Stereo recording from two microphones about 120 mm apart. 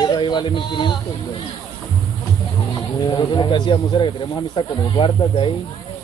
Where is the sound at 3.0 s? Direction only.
40° left (ahead or behind).